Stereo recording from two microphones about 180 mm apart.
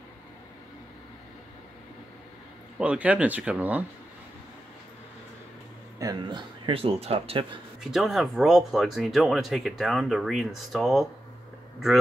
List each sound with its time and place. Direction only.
2.8 s speech: 5° right (ahead or behind)
5.9 s speech: 20° right (ahead or behind)
7.8 s speech: centre (ahead or behind)